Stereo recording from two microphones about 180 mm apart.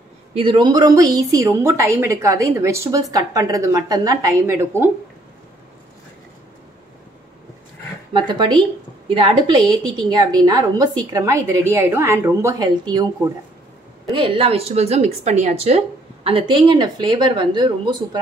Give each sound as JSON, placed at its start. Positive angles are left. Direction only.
{"t": 0.3, "sound": "a woman's voice", "side_deg": -30}
{"t": 8.1, "sound": "a woman's voice", "side_deg": -25}
{"t": 14.1, "sound": "a woman's voice", "side_deg": -30}